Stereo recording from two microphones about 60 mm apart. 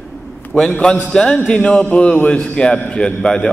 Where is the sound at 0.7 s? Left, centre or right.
Left.